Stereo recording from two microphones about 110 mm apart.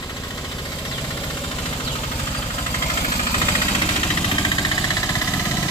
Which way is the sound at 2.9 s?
45° left (ahead or behind).